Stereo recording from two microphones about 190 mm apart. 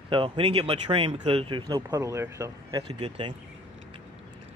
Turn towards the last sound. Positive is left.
turn(degrees=-25)  # may be behind; listen again after turning